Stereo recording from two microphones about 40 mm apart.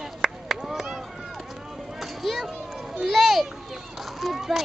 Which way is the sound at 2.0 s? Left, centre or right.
Centre.